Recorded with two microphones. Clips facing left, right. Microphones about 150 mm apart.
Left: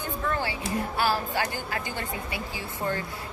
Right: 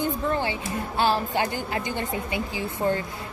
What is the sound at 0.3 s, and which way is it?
A woman's voice, 20° right (ahead or behind).